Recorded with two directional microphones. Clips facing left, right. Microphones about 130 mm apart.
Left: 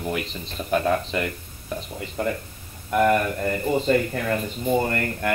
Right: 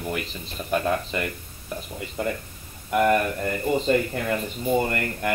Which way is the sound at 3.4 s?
30° left (ahead or behind).